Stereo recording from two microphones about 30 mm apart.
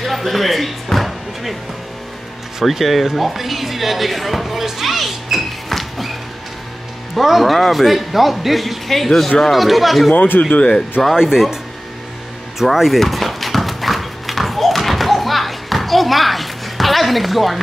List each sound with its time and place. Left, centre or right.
0.0 s music: centre
2.7 s speech: centre
7.2 s speech: centre
10.1 s speech: left
11.1 s speech: centre
12.5 s speech: centre
13.0 s a sound: centre